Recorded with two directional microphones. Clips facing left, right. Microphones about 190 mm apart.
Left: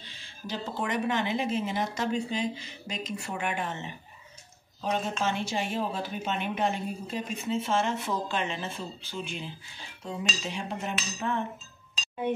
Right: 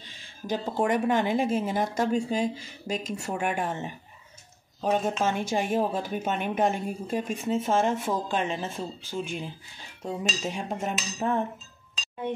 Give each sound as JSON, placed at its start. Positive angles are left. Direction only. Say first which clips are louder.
{"t": 0.0, "sound": "speech", "louder": "right 2 dB", "side_deg": -50}